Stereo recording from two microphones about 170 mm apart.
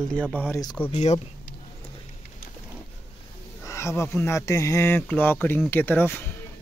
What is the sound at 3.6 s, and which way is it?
Speech, 15° left (ahead or behind).